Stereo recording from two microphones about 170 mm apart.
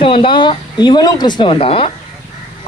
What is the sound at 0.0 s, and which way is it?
A man's voice, 30° left (ahead or behind).